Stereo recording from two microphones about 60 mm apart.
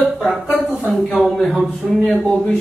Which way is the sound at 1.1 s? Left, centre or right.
Centre.